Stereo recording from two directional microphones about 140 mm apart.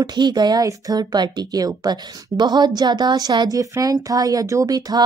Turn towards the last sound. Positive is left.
turn(degrees=-25)  # may be behind; listen again after turning